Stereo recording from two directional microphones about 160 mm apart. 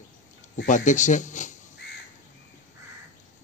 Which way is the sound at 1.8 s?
90° left.